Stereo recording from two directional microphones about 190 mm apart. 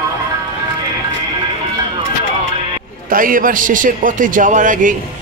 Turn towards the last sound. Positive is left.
turn(degrees=-45)  # may be behind; listen again after turning